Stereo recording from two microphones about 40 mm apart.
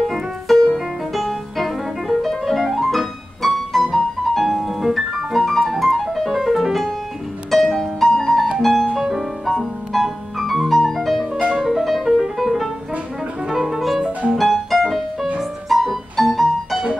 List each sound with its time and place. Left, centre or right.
0.0 s music: centre
2.2 s piano: centre
2.6 s music: centre